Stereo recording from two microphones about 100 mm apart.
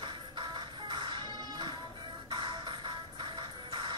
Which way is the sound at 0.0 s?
50° right (ahead or behind).